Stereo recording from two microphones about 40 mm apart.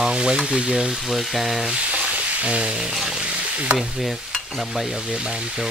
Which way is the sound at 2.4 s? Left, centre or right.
Right.